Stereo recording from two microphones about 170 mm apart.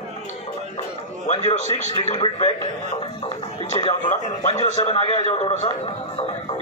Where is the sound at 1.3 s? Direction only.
40° left (ahead or behind).